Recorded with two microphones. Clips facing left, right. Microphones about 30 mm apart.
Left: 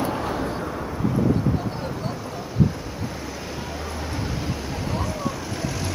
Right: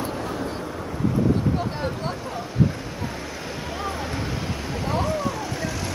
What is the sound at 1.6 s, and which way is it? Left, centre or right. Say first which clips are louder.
Vehicle: right 2 dB; right.